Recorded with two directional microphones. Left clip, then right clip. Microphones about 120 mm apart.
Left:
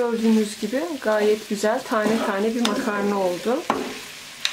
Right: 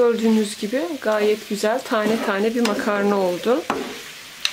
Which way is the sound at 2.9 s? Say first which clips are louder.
Right 3 dB; 45° right (ahead or behind).